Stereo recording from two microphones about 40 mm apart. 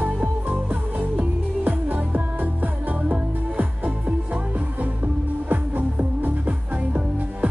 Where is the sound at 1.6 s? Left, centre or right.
Right.